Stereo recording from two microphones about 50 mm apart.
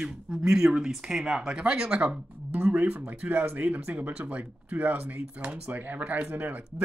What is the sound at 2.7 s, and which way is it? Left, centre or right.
Speech, right.